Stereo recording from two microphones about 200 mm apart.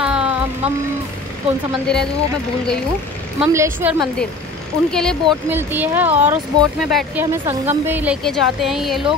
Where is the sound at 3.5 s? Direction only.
15° right (ahead or behind).